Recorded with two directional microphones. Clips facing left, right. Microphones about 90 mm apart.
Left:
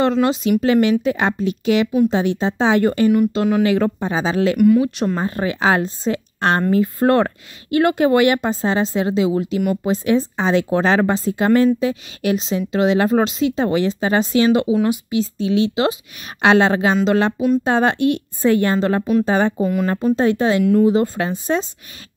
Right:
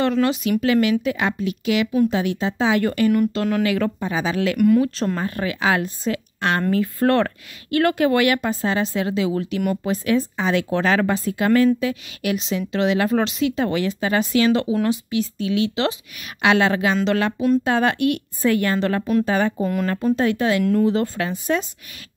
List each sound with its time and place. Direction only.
0.0 s a woman's voice: 25° left (ahead or behind)
4.6 s speech: 5° left (ahead or behind)
5.1 s a woman's voice: 25° left (ahead or behind)
16.3 s a woman's voice: 30° left (ahead or behind)
19.5 s speech: 5° left (ahead or behind)
20.2 s a woman's voice: 25° left (ahead or behind)